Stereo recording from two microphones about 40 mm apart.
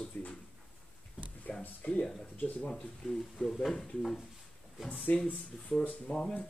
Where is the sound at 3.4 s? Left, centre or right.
Centre.